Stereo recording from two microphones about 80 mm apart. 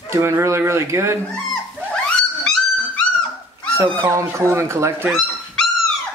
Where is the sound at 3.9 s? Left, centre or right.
Right.